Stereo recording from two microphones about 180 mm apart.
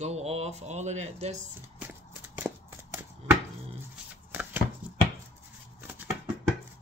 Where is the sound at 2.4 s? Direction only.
10° right (ahead or behind).